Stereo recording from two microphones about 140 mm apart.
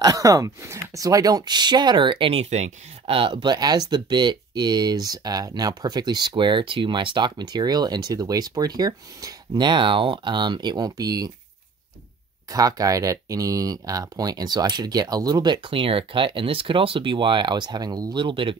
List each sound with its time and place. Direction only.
0.0 s speech: 25° right (ahead or behind)
12.4 s speech: 25° right (ahead or behind)